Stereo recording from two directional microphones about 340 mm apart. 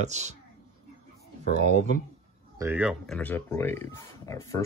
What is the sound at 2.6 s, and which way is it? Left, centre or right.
Speech, centre.